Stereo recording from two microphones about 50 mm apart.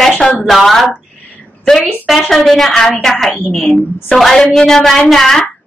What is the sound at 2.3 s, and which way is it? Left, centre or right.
A woman's voice, centre.